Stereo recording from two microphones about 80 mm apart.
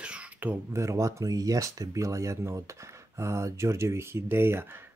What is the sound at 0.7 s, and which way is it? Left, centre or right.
Speech, right.